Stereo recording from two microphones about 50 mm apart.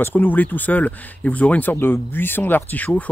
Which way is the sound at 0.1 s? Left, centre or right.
Left.